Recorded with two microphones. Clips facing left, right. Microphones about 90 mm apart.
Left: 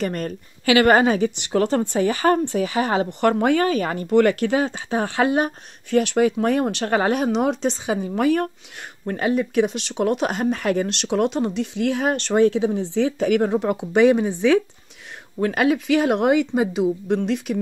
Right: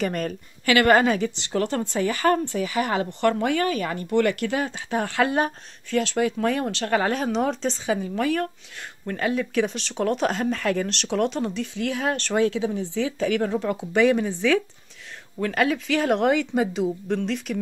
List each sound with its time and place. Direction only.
0.0 s a woman's voice: centre (ahead or behind)
0.7 s speech: 20° left (ahead or behind)
4.8 s speech: 20° left (ahead or behind)
7.2 s speech: 15° left (ahead or behind)
7.9 s speech: 25° left (ahead or behind); by 11.5 s 5° left (ahead or behind)
11.5 s speech: 20° left (ahead or behind)